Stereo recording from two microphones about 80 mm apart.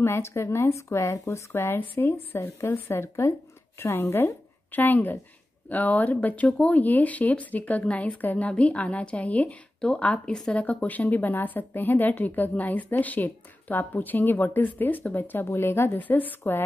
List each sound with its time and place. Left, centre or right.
0.0 s a woman's voice: left